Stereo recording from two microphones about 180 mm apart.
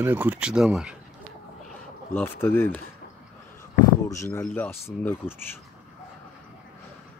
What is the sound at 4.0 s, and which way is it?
Speech, 15° left (ahead or behind).